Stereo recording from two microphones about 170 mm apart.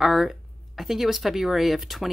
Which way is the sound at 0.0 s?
Centre (ahead or behind).